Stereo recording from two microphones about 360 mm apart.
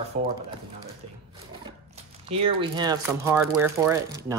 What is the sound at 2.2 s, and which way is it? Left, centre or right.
Speech, centre.